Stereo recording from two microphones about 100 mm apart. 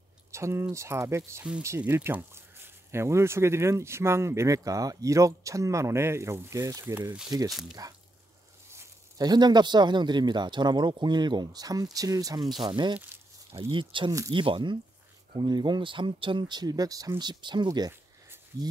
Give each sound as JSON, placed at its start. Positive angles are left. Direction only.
{"t": 0.3, "sound": "speech", "side_deg": -25}
{"t": 7.2, "sound": "speech", "side_deg": -35}
{"t": 9.2, "sound": "speech", "side_deg": -45}
{"t": 13.5, "sound": "speech", "side_deg": -60}
{"t": 17.2, "sound": "speech", "side_deg": -50}